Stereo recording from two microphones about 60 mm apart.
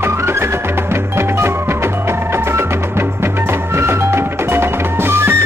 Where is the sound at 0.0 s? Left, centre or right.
Right.